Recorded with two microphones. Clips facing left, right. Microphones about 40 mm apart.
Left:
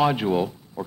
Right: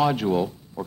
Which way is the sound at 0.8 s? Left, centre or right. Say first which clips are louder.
Even; centre.